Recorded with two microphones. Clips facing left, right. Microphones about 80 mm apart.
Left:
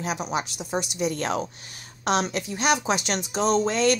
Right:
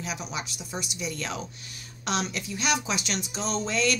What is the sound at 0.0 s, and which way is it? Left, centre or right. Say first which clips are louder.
A woman's voice: left 7 dB; left.